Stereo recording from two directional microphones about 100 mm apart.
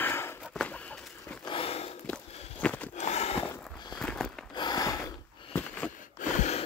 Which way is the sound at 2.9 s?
90° left.